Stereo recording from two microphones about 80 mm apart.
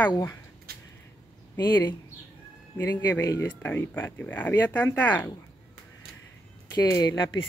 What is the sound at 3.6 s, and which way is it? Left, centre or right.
Speech, left.